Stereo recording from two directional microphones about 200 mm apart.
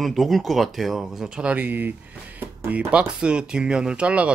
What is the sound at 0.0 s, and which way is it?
Speech, centre (ahead or behind).